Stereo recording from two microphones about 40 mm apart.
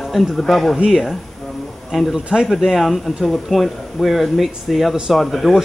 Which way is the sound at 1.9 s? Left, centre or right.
Centre.